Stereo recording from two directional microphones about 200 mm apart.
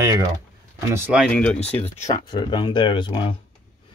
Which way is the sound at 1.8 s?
35° left (ahead or behind).